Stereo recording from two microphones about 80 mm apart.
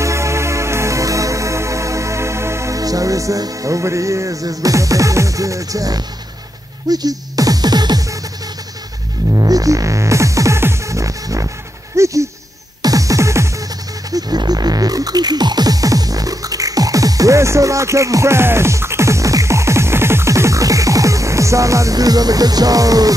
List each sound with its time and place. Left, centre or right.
0.0 s music: right
9.3 s music: right
12.0 s a sound: right
12.8 s music: right
14.1 s music: right